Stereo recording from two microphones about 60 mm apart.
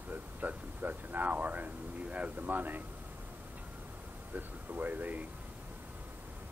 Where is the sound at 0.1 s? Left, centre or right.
Right.